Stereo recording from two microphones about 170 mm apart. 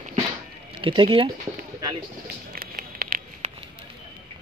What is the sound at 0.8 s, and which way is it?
Speech, 30° right (ahead or behind).